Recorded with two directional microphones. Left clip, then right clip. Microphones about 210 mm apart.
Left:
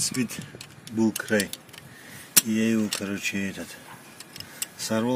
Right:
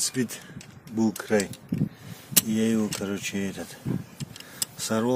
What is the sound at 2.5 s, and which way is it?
Speech, 5° right (ahead or behind).